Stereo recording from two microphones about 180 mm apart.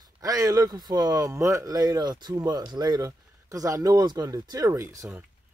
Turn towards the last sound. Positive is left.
turn(degrees=-15)  # may be behind; listen again after turning